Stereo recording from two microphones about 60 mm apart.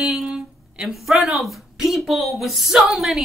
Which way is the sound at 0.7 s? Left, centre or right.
Centre.